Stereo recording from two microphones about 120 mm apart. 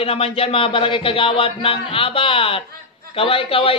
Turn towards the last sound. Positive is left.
turn(degrees=50)  # may be behind; listen again after turning